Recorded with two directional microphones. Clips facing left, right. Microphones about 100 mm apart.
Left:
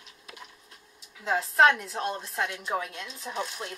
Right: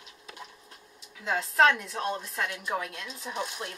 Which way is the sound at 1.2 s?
5° left (ahead or behind).